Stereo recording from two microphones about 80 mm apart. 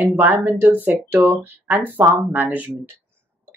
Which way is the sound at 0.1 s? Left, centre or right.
Right.